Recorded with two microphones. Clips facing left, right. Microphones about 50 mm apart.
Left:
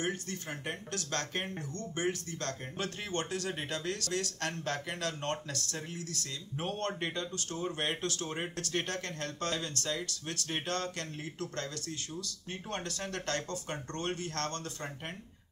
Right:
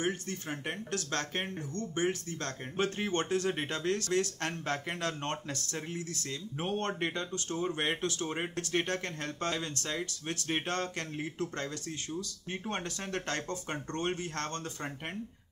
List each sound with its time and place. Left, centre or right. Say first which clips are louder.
0.0 s speech: right 2 dB; right